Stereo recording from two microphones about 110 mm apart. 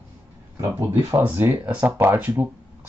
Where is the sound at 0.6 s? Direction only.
25° right (ahead or behind).